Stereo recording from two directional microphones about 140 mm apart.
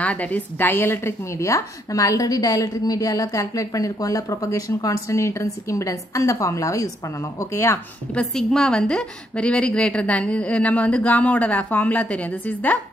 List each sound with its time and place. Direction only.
0.0 s a woman's voice: 10° left (ahead or behind)
8.1 s a woman's voice: 5° left (ahead or behind)